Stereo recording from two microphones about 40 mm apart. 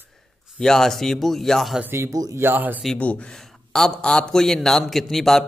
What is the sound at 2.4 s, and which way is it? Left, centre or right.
Speech, right.